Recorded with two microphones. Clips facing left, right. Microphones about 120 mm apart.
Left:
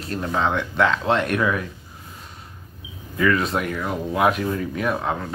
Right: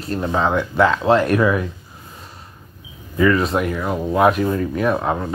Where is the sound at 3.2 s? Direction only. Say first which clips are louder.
Right 4 dB; 5° right (ahead or behind).